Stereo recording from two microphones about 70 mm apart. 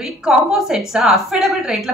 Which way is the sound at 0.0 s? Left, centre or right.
Centre.